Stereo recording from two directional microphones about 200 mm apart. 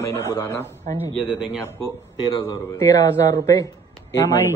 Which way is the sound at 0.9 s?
40° right (ahead or behind).